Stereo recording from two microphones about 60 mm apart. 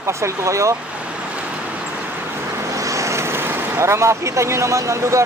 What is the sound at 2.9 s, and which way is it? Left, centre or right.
Vehicle, right.